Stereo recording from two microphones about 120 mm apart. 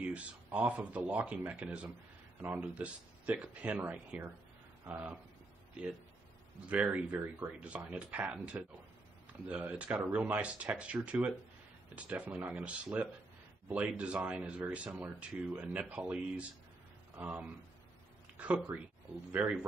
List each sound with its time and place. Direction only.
0.0 s speech: 10° right (ahead or behind)
6.7 s speech: 10° right (ahead or behind)
18.4 s speech: 10° right (ahead or behind)